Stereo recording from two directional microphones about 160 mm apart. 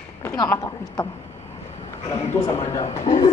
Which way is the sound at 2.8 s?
40° left (ahead or behind).